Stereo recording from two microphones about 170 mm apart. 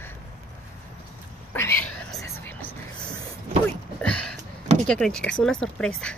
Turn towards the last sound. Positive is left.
turn(degrees=5)  # may be behind; listen again after turning